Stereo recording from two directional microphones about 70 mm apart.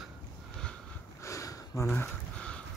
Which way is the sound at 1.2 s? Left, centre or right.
Left.